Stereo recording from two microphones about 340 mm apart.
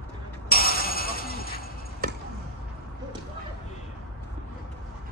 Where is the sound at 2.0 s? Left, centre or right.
Right.